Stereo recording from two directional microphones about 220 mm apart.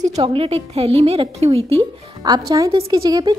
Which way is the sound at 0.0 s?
30° right (ahead or behind).